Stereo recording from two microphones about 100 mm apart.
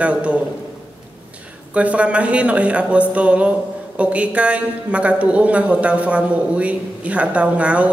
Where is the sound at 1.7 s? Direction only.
15° right (ahead or behind).